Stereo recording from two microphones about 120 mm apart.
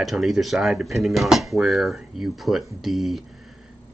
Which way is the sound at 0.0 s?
Centre (ahead or behind).